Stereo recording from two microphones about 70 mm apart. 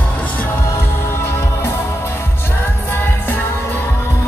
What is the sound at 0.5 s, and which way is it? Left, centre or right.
Music, left.